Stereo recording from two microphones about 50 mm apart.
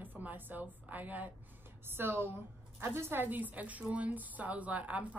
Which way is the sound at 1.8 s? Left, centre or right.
Right.